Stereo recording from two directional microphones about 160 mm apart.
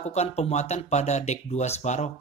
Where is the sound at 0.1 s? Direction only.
45° left (ahead or behind).